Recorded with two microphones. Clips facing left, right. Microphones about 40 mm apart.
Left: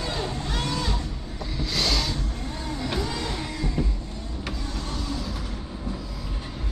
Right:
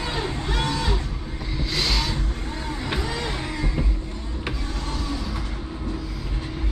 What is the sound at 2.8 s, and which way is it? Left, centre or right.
Vehicle, right.